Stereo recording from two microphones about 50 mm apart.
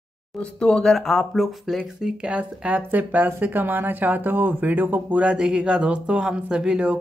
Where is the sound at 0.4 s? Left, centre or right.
Centre.